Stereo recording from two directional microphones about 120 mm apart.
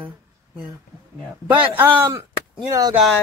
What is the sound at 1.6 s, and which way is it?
Speech, 15° right (ahead or behind).